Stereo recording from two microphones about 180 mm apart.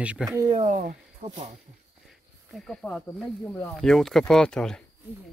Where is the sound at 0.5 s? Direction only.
40° right (ahead or behind).